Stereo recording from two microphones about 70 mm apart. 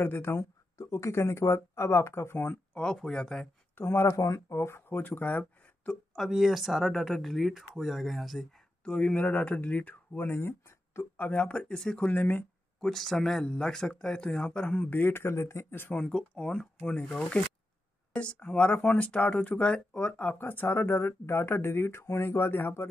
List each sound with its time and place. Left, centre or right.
0.0 s speech: left
2.7 s speech: centre
3.7 s speech: left; by 5.9 s centre
6.1 s speech: centre
8.8 s speech: centre
12.1 s speech: left
12.8 s speech: centre; by 15.9 s left
16.1 s speech: centre; by 22.8 s left